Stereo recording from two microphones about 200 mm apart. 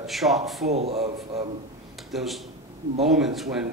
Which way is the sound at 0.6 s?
30° right (ahead or behind).